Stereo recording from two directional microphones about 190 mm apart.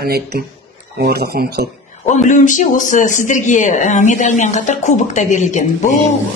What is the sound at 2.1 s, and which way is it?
A man's voice, 40° left (ahead or behind).